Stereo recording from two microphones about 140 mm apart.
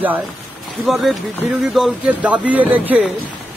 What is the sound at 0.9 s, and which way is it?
Speech, centre (ahead or behind).